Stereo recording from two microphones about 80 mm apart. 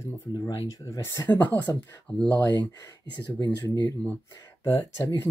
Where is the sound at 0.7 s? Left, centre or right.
Left.